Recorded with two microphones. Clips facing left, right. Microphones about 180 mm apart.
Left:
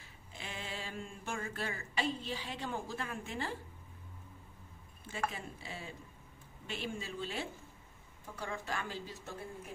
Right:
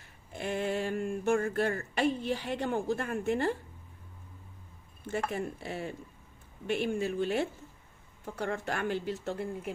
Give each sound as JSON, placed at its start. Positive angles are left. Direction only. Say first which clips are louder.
{"t": 0.3, "sound": "speech", "louder": "right 13 dB", "side_deg": -55}
{"t": 5.0, "sound": "speech", "louder": "right 7 dB", "side_deg": -55}